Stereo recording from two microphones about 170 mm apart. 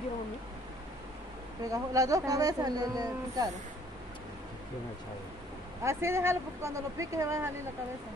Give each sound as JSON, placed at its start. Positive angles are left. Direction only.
{"t": 1.6, "sound": "speech", "side_deg": -20}
{"t": 5.9, "sound": "speech", "side_deg": -15}